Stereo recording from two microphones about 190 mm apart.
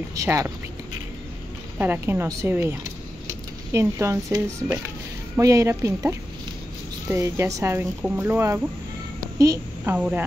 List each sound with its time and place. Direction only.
0.1 s speech: 15° right (ahead or behind)
1.8 s a woman's voice: 10° right (ahead or behind)
9.9 s speech: 5° right (ahead or behind)